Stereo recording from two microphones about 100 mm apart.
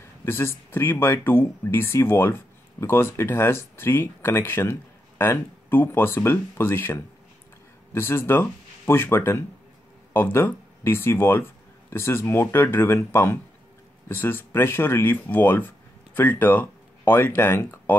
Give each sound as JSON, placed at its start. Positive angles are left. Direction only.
{"t": 0.0, "sound": "speech", "side_deg": 25}